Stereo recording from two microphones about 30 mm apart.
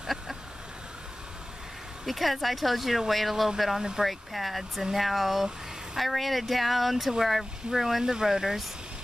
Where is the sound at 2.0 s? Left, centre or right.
Centre.